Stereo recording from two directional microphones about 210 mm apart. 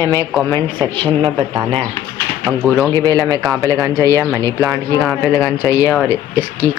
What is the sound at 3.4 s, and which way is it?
Speech, centre (ahead or behind).